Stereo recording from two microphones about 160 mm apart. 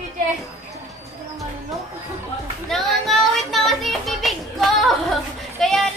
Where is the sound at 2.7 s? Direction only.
Centre (ahead or behind).